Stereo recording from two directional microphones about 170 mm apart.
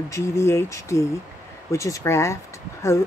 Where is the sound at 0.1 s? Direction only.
15° left (ahead or behind).